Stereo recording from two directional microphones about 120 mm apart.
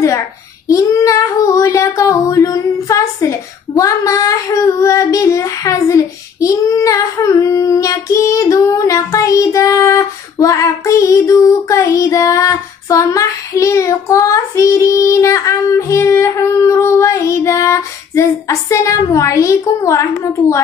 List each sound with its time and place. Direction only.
0.7 s child singing: 25° left (ahead or behind)